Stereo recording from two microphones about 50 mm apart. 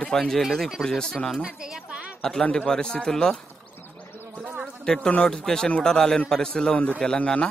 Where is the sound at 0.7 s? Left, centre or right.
Centre.